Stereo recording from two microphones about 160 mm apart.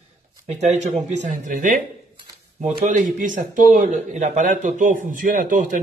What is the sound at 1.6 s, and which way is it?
Speech, 60° right (ahead or behind).